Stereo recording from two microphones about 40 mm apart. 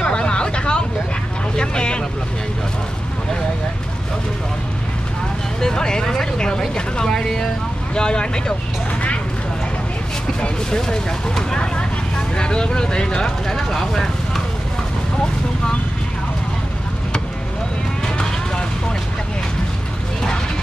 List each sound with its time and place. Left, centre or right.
0.0 s vehicle: left
1.6 s boat: left
5.6 s a sound: centre
6.7 s vehicle: centre
7.9 s speech: left
10.7 s speech: centre
13.5 s speech: centre
18.0 s vehicle: centre